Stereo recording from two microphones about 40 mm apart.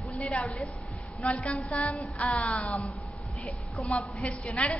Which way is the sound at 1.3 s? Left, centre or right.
Left.